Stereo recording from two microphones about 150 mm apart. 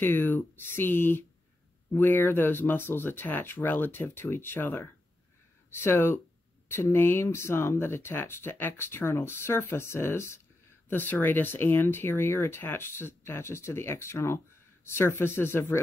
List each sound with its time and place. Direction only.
0.0 s speech: 15° left (ahead or behind)